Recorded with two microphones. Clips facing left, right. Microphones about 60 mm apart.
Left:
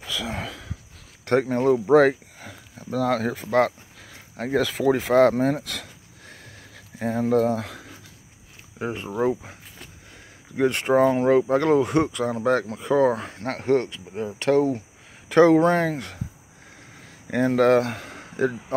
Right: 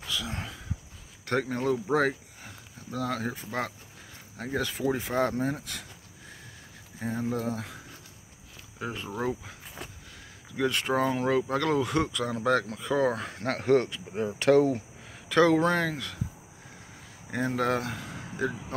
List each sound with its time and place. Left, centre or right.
0.3 s a sound: left
1.4 s speech: left
3.1 s speech: left
4.6 s speech: left
7.0 s speech: left
8.7 s speech: left
13.3 s speech: centre
15.2 s speech: left
17.3 s speech: left